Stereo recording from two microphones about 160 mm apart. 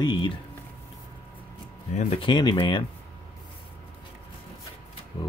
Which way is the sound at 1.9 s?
45° left (ahead or behind).